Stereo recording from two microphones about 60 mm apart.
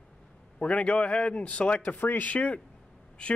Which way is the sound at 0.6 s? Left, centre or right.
Left.